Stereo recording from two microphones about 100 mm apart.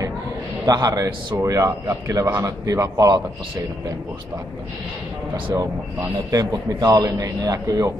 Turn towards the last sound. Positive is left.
turn(degrees=-35)  # may be behind; listen again after turning